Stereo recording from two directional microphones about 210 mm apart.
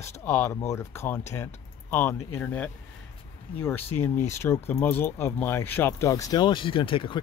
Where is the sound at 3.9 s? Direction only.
10° left (ahead or behind).